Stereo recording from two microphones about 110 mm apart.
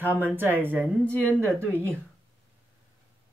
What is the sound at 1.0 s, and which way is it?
Speech, 10° left (ahead or behind).